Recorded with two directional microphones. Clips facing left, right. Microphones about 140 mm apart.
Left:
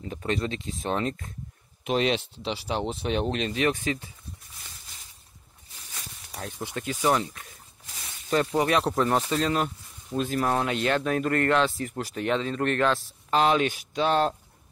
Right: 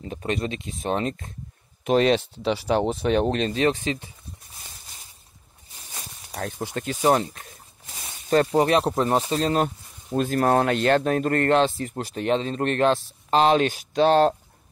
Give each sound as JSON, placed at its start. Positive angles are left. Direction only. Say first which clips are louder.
{"t": 0.0, "sound": "speech", "louder": "right 1 dB", "side_deg": -25}
{"t": 1.9, "sound": "speech", "louder": "right 6 dB", "side_deg": -45}
{"t": 6.6, "sound": "a sound", "louder": "right 3 dB", "side_deg": -40}
{"t": 8.5, "sound": "speech", "louder": "right 4 dB", "side_deg": -25}
{"t": 10.1, "sound": "speech", "louder": "right 5 dB", "side_deg": -50}